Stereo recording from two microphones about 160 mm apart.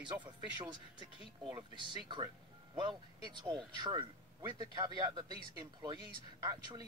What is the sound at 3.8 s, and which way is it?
Speech, 30° right (ahead or behind).